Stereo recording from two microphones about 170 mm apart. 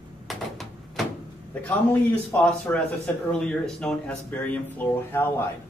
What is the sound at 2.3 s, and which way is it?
Speech, 5° left (ahead or behind).